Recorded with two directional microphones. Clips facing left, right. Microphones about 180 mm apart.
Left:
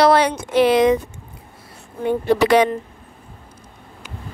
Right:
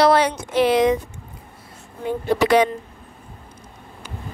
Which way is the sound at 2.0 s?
70° left (ahead or behind).